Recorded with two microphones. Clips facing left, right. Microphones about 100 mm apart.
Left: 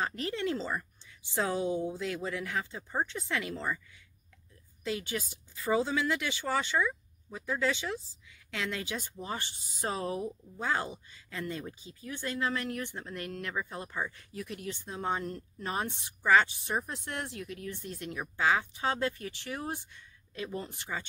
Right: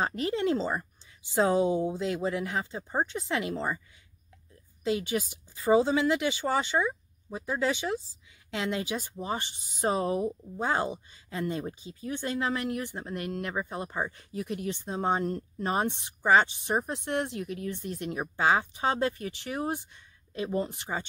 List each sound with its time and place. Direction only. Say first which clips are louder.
0.0 s speech: right 5 dB; 20° right (ahead or behind)
4.8 s speech: right 6 dB; 20° right (ahead or behind)